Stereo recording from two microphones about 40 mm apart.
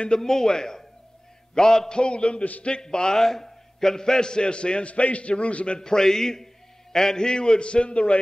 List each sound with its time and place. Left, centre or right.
0.2 s a man's voice: centre; by 5.8 s left
5.8 s a man's voice: centre